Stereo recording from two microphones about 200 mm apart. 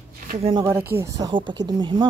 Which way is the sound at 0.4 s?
25° right (ahead or behind).